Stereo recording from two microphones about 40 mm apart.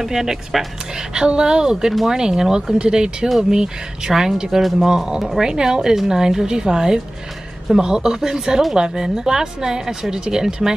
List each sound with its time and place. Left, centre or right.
0.0 s a woman's voice: centre
1.1 s a woman's voice: right